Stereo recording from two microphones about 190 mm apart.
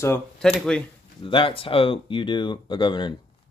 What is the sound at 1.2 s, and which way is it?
Speech, 25° left (ahead or behind).